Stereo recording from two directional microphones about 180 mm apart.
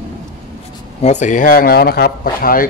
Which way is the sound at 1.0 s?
40° left (ahead or behind).